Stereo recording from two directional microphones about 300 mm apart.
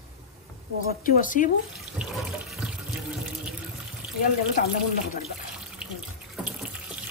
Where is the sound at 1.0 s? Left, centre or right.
Left.